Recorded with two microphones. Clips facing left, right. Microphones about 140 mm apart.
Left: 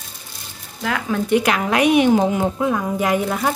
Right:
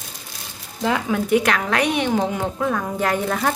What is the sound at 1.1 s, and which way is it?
A woman's voice, centre (ahead or behind).